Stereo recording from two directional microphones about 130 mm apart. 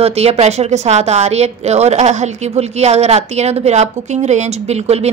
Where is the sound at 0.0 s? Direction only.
55° right (ahead or behind).